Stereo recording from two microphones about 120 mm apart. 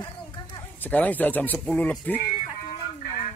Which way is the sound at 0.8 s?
15° left (ahead or behind).